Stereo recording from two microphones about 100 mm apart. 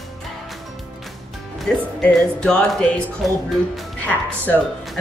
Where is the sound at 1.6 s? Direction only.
5° left (ahead or behind).